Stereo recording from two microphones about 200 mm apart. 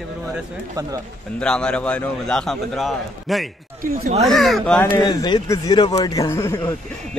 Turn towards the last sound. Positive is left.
turn(degrees=15)  # may be behind; listen again after turning